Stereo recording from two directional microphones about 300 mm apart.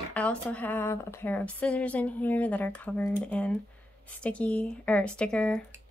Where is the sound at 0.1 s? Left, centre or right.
Centre.